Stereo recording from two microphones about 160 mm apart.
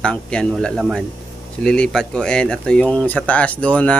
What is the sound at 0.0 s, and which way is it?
Speech, 5° left (ahead or behind).